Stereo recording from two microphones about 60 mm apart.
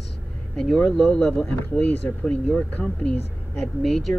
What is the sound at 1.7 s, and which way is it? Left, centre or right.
Speech, left.